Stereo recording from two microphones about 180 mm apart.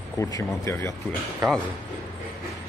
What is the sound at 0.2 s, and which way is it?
Speech, 20° left (ahead or behind).